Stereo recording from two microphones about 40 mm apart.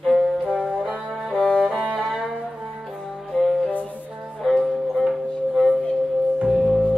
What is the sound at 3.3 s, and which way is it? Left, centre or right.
Music, centre.